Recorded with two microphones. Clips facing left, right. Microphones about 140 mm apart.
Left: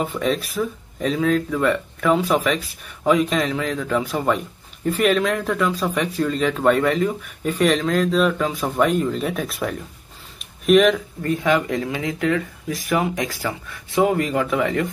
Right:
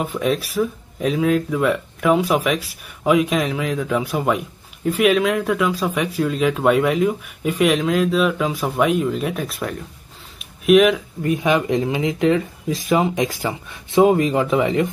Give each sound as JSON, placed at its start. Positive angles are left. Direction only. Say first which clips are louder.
{"t": 0.0, "sound": "speech", "louder": "right 1 dB", "side_deg": -5}
{"t": 11.4, "sound": "speech", "louder": "right 2 dB", "side_deg": -20}